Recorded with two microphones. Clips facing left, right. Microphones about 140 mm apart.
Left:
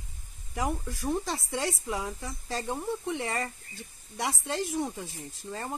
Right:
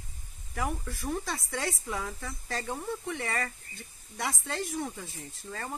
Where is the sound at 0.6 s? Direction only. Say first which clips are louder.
Left 2 dB; 15° left (ahead or behind).